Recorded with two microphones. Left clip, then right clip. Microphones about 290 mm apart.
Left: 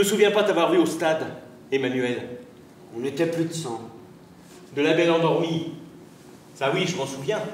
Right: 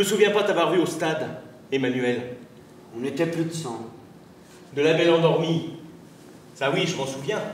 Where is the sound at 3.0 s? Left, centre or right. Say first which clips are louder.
Left 1 dB; centre.